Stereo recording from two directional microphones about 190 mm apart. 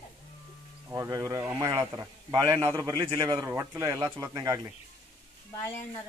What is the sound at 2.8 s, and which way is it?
Speech, 25° right (ahead or behind).